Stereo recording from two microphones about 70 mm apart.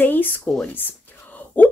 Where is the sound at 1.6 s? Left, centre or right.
Left.